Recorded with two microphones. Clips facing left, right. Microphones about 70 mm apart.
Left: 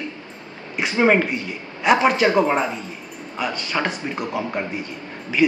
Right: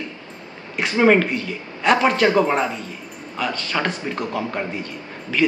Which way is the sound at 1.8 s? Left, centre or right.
Centre.